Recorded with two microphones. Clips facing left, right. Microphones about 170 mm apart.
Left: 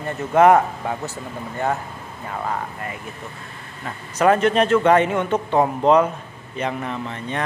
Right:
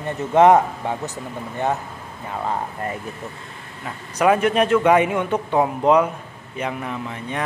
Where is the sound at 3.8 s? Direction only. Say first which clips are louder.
Left 1 dB; 10° right (ahead or behind).